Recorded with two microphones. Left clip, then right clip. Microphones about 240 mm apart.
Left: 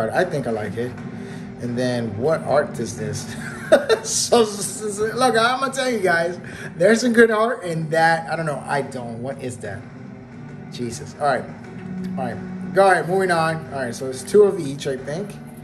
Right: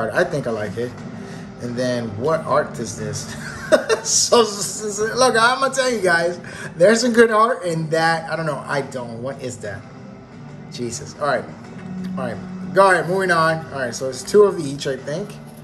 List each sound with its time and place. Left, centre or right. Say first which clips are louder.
0.0 s a man's voice: right 1 dB; centre
10.8 s a man's voice: left 1 dB; centre